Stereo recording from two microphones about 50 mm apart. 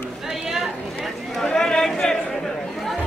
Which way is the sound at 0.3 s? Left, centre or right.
Centre.